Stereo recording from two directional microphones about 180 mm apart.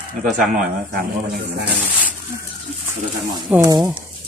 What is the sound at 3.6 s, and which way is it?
Speech, 20° right (ahead or behind).